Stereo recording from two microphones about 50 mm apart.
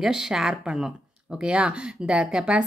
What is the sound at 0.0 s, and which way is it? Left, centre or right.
A woman's voice, centre.